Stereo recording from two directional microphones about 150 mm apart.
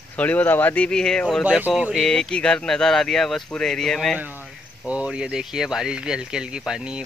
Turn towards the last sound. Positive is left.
turn(degrees=-5)  # may be behind; listen again after turning